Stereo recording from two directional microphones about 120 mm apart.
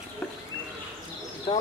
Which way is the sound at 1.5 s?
40° left (ahead or behind).